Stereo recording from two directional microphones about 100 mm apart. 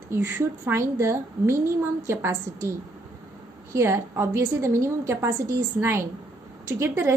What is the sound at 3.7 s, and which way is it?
A woman's voice, 25° right (ahead or behind).